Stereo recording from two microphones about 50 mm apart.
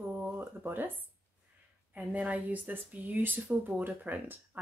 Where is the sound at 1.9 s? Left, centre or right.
Right.